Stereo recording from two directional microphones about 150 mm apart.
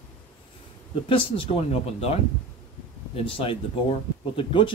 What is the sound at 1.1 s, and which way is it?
Speech, 40° left (ahead or behind).